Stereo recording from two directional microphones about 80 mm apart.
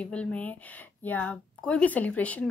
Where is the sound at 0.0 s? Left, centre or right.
Centre.